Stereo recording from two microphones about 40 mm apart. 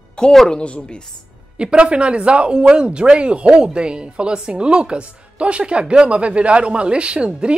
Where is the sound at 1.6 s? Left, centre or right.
Right.